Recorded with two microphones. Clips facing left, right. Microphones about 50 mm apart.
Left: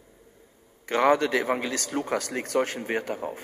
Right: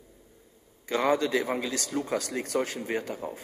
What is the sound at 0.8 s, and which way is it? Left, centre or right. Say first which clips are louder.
A man's voice: left 4 dB; left.